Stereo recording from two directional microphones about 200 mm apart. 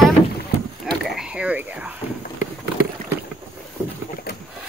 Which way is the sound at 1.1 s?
5° right (ahead or behind).